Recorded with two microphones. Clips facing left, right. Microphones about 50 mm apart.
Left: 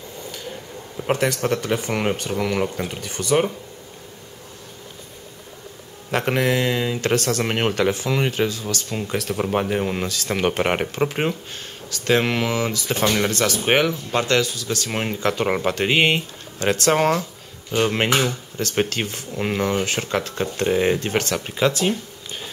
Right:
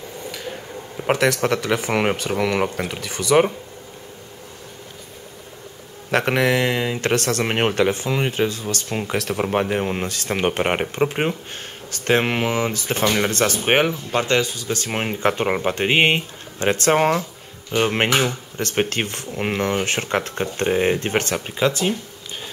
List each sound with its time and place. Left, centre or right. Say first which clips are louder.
1.1 s speech: right 2 dB; right
2.9 s speech: right 3 dB; right
6.1 s speech: right 2 dB; right
9.4 s speech: right 1 dB; right
9.7 s speech: even; right
11.5 s speech: even; right
16.9 s speech: right 1 dB; right
18.6 s speech: right 1 dB; right
21.5 s speech: left 1 dB; centre
21.8 s a sound: even; centre